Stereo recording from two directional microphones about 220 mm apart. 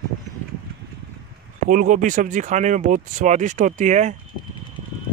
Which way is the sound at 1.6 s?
35° right (ahead or behind).